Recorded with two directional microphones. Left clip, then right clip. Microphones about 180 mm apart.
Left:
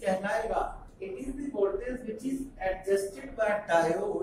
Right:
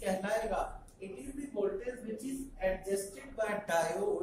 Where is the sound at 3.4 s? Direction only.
15° right (ahead or behind).